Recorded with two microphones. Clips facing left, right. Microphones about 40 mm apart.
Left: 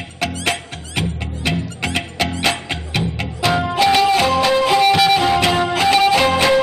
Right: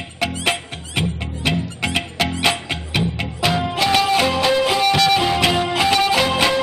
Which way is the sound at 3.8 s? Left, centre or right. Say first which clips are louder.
Left 3 dB; centre.